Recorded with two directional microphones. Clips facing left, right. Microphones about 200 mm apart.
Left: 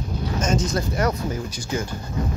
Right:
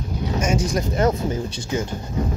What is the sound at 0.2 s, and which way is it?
Speech, 10° right (ahead or behind).